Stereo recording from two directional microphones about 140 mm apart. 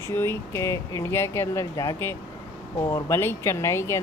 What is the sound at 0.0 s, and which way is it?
Speech, 20° left (ahead or behind).